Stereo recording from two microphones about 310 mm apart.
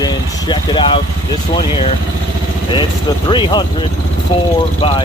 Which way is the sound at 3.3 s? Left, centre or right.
Centre.